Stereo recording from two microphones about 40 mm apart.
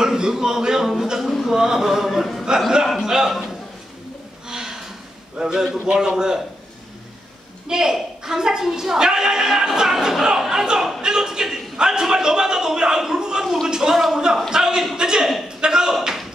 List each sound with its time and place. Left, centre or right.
0.0 s a woman's voice: centre
4.5 s a sound: centre
5.4 s a woman's voice: centre
7.6 s a woman's voice: centre